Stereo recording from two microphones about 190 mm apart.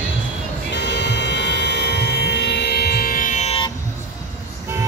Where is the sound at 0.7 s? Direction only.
65° left (ahead or behind); by 3.6 s 35° left (ahead or behind).